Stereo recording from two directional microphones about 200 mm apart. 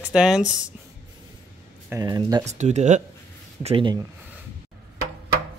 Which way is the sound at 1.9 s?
20° right (ahead or behind).